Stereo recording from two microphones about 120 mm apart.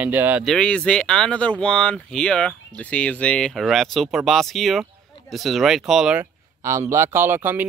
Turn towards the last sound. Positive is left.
turn(degrees=-20)  # may be behind; listen again after turning